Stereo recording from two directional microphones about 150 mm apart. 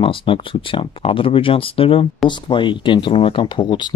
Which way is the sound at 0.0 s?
35° left (ahead or behind).